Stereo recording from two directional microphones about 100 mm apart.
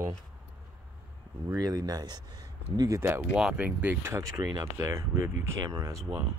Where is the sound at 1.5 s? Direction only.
40° right (ahead or behind).